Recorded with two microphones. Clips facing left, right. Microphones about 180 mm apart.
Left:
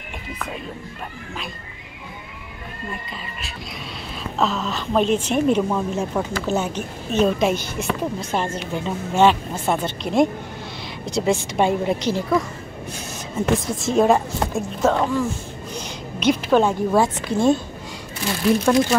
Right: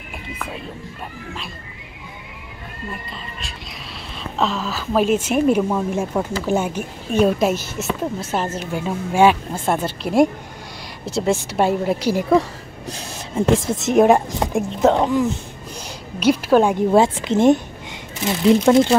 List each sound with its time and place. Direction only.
4.4 s a woman's voice: centre (ahead or behind)
13.5 s a woman's voice: 20° right (ahead or behind)
16.2 s a woman's voice: 5° right (ahead or behind)
17.1 s speech: 20° right (ahead or behind)